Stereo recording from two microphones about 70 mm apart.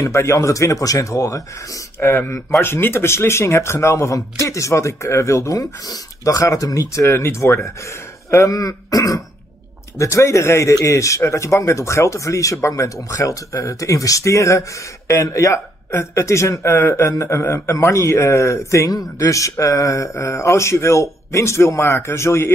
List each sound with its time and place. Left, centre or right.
0.0 s speech: left
2.0 s speech: left
9.9 s speech: left